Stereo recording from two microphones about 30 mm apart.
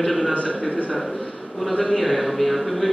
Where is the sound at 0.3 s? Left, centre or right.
Left.